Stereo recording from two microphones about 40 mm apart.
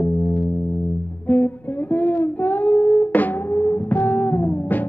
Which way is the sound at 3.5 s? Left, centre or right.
Left.